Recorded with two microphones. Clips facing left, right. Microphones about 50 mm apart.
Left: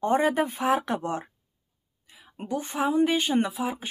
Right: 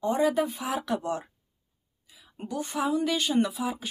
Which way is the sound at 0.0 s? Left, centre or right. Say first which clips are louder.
Left 2 dB; left.